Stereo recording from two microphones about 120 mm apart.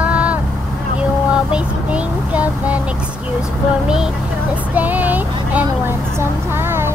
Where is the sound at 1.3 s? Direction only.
10° right (ahead or behind).